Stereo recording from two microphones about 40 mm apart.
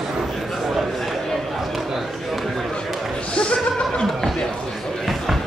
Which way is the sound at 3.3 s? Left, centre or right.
Left.